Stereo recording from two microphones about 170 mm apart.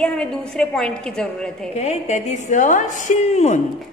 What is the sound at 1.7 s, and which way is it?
A woman's voice, 40° left (ahead or behind).